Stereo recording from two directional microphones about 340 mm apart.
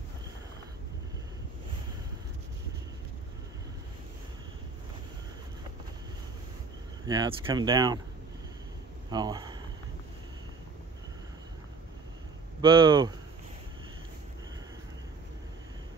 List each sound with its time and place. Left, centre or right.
7.1 s speech: centre
9.1 s speech: centre
12.6 s speech: centre